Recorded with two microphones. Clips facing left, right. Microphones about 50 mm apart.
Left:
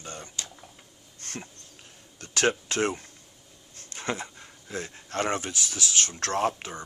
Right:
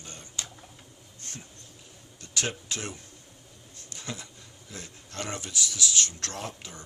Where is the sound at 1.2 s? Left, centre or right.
Left.